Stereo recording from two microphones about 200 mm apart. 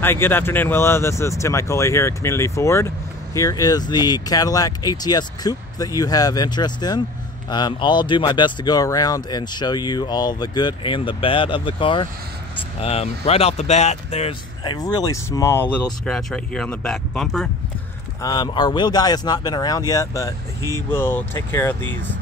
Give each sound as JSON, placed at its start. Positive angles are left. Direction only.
{"t": 0.0, "sound": "speech", "side_deg": 10}
{"t": 18.2, "sound": "speech", "side_deg": 20}